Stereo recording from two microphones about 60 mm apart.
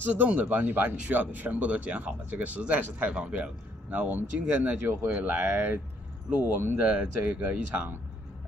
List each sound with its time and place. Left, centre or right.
0.0 s speech: right
3.9 s speech: right